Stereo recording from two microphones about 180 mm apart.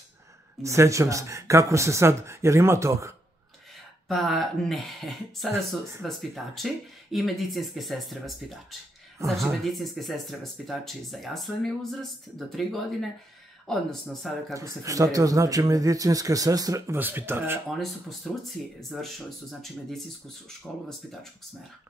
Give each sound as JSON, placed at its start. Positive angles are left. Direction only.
{"t": 0.6, "sound": "speech", "side_deg": -15}
{"t": 4.1, "sound": "speech", "side_deg": 0}
{"t": 14.5, "sound": "speech", "side_deg": -15}
{"t": 17.6, "sound": "speech", "side_deg": 0}